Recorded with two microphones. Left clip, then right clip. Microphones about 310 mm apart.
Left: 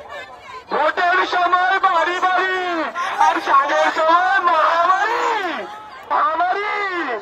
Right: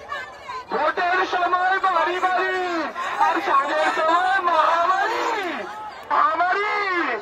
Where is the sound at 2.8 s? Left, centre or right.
Left.